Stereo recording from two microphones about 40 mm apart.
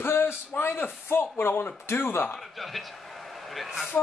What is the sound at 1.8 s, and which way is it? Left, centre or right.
Speech, left.